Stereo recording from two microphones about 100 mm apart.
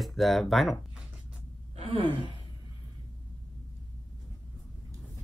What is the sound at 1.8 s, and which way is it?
Gasp, 90° right.